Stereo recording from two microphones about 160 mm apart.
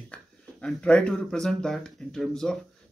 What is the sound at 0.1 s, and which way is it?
Speech, 5° left (ahead or behind).